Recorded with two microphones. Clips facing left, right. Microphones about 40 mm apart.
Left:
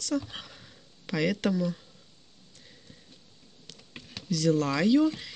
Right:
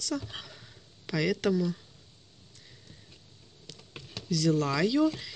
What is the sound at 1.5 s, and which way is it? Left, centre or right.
Speech, centre.